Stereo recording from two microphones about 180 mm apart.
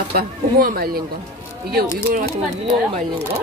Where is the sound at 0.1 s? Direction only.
55° right (ahead or behind).